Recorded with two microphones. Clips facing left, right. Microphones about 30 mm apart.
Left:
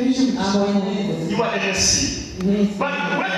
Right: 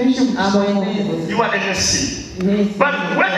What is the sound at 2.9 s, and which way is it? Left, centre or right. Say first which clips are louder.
Music: right 3 dB; centre.